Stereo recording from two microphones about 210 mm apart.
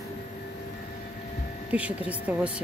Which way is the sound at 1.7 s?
5° right (ahead or behind).